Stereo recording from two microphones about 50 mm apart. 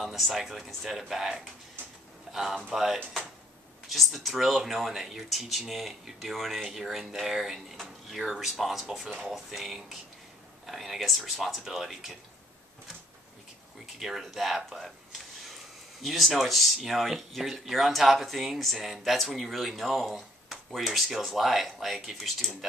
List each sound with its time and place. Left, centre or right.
0.0 s speech: centre
2.3 s a sound: centre
2.7 s speech: centre
13.9 s speech: centre